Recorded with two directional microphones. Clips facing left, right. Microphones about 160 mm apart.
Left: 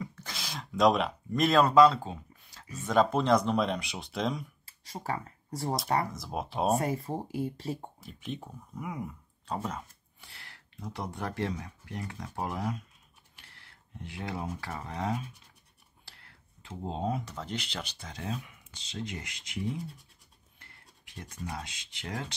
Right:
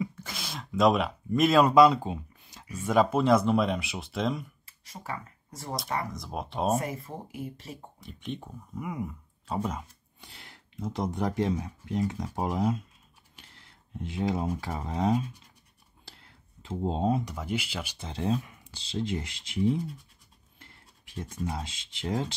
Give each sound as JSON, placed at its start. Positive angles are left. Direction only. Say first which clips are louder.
{"t": 0.0, "sound": "a sound", "louder": "right 5 dB", "side_deg": -5}
{"t": 2.8, "sound": "speech", "louder": "right 2 dB", "side_deg": -5}
{"t": 4.6, "sound": "speech", "louder": "left 7 dB", "side_deg": 35}
{"t": 6.1, "sound": "speech", "louder": "even", "side_deg": 0}
{"t": 6.8, "sound": "speech", "louder": "left 4 dB", "side_deg": 35}
{"t": 8.0, "sound": "speech", "louder": "right 2 dB", "side_deg": 0}
{"t": 14.0, "sound": "speech", "louder": "right 7 dB", "side_deg": -20}
{"t": 16.6, "sound": "speech", "louder": "right 6 dB", "side_deg": -25}
{"t": 17.2, "sound": "speech", "louder": "right 5 dB", "side_deg": -10}
{"t": 17.9, "sound": "speech", "louder": "right 12 dB", "side_deg": -25}
{"t": 21.1, "sound": "speech", "louder": "right 6 dB", "side_deg": -25}